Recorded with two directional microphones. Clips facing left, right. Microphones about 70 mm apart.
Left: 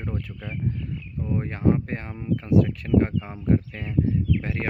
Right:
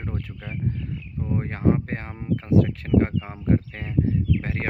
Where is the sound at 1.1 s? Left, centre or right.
Right.